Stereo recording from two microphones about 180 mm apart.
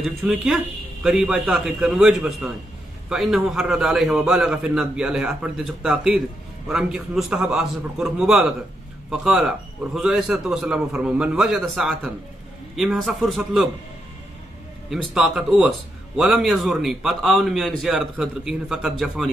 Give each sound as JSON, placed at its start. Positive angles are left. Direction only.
{"t": 0.0, "sound": "a man's voice", "side_deg": 0}
{"t": 14.9, "sound": "a man's voice", "side_deg": 0}